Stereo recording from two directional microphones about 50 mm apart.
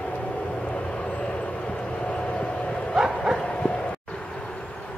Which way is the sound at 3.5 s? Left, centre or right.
Centre.